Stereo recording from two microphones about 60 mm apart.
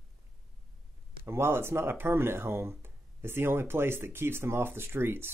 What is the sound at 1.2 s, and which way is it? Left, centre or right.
Speech, right.